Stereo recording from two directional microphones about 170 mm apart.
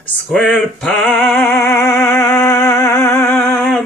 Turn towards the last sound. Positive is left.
turn(degrees=15)  # may be behind; listen again after turning